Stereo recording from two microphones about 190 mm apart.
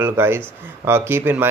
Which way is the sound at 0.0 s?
15° right (ahead or behind).